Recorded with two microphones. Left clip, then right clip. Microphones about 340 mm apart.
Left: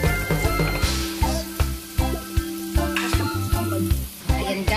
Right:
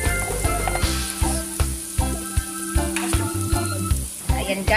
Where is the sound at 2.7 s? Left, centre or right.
Centre.